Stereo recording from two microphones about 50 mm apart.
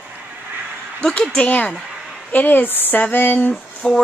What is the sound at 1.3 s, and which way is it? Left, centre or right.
A woman's voice, left.